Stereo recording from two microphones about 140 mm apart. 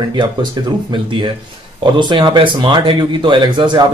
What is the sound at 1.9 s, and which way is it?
Speech, 35° right (ahead or behind).